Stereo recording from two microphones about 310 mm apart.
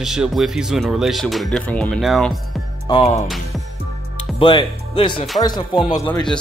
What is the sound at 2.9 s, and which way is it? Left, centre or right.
Speech, centre.